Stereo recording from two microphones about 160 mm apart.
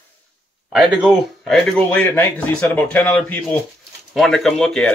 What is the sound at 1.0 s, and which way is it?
Speech, centre (ahead or behind).